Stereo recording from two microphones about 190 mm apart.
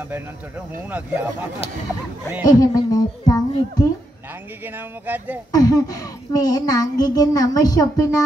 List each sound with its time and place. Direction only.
0.8 s speech: 10° right (ahead or behind)
2.4 s a child's voice: 20° left (ahead or behind)
4.6 s speech: 10° right (ahead or behind)
5.5 s a child's voice: 20° left (ahead or behind)